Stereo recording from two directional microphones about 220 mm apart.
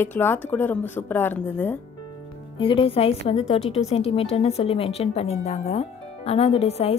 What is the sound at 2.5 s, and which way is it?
A woman's voice, 25° left (ahead or behind).